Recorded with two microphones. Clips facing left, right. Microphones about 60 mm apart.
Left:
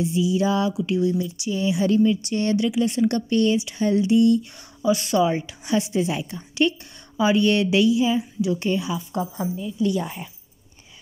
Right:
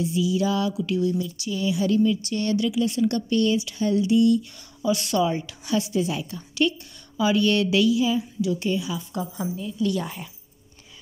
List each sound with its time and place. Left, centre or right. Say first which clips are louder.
0.0 s a woman's voice: left 2 dB; left
4.8 s speech: left 3 dB; centre
5.1 s a woman's voice: left 3 dB; centre; by 8.9 s left
9.4 s speech: left 1 dB; centre